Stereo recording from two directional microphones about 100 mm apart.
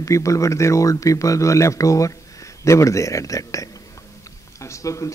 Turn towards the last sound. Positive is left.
turn(degrees=30)  # may be behind; listen again after turning